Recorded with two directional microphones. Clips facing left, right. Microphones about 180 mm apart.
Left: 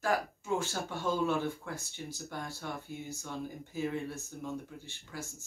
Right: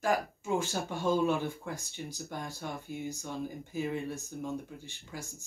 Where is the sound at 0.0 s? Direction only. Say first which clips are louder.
Right 2 dB; 15° right (ahead or behind).